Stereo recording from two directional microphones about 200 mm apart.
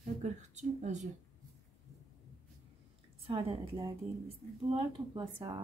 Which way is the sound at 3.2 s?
30° right (ahead or behind).